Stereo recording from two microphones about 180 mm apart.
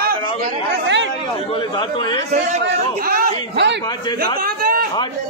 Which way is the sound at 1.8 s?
25° left (ahead or behind).